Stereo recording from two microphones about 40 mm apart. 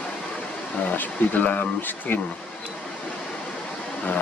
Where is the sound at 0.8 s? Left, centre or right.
Left.